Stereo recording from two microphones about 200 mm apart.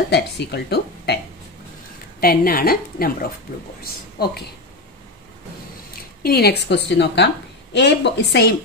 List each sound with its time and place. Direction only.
0.1 s a woman's voice: 55° left (ahead or behind)
6.2 s a woman's voice: 55° left (ahead or behind)